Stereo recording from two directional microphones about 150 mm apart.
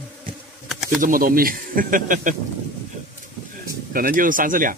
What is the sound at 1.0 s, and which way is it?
Speech, 70° right (ahead or behind).